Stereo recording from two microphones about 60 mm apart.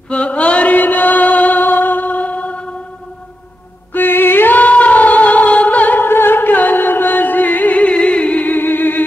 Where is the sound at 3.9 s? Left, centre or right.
Left.